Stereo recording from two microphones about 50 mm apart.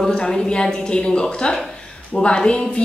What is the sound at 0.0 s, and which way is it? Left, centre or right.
A woman's voice, centre.